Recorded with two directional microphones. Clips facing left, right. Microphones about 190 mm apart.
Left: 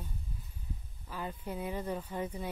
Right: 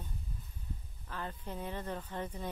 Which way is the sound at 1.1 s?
10° left (ahead or behind).